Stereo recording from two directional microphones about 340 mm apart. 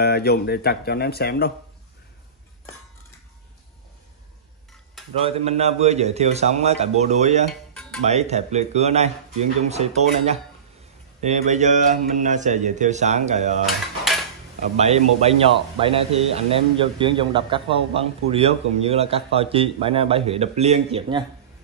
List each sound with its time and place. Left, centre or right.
0.0 s speech: left
5.2 s speech: centre
7.7 s music: centre
8.0 s speech: centre
14.6 s a man's voice: centre